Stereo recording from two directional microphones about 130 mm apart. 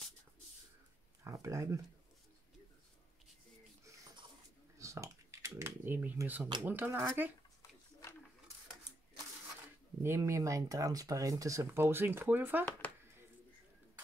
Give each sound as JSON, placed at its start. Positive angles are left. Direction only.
{"t": 1.2, "sound": "speech", "side_deg": -25}
{"t": 4.7, "sound": "a sound", "side_deg": -25}
{"t": 6.6, "sound": "speech", "side_deg": -15}
{"t": 10.0, "sound": "speech", "side_deg": -20}